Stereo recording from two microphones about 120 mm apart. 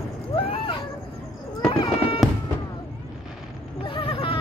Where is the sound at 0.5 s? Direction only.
45° left (ahead or behind).